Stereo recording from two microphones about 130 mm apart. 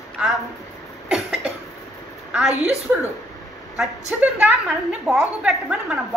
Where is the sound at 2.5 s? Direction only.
55° right (ahead or behind).